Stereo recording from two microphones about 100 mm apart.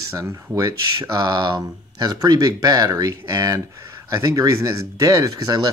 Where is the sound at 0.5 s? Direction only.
40° right (ahead or behind).